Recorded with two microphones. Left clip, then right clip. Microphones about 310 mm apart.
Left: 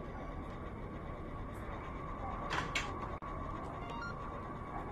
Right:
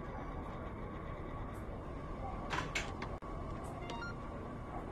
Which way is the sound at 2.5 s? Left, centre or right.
Centre.